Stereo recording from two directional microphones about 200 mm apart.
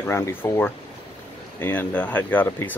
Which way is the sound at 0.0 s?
10° left (ahead or behind).